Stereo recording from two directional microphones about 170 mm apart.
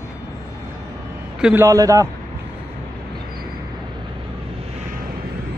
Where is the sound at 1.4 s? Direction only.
10° right (ahead or behind).